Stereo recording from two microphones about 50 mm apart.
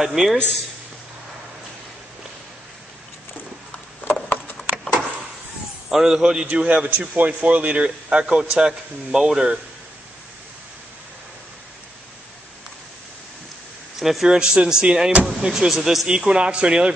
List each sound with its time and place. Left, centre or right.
0.0 s a man's voice: centre
4.0 s a sound: left
5.9 s speech: centre
6.4 s a man's voice: right
7.8 s speech: centre
13.9 s speech: centre
16.1 s speech: centre